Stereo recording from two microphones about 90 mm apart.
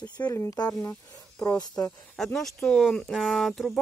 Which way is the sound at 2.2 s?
5° left (ahead or behind).